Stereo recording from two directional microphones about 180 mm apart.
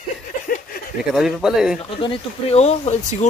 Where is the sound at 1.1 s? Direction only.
Centre (ahead or behind).